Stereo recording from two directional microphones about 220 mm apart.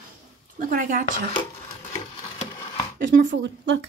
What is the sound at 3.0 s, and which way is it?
Speech, 40° right (ahead or behind).